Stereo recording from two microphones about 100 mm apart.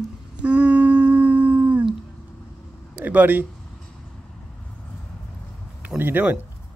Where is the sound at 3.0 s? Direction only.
15° right (ahead or behind).